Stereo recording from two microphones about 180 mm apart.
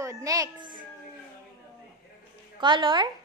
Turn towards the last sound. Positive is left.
turn(degrees=-25)  # may be behind; listen again after turning